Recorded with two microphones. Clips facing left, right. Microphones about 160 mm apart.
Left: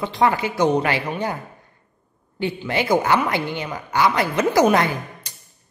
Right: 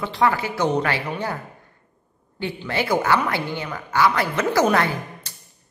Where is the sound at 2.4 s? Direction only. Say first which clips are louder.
Left 2 dB; 15° left (ahead or behind).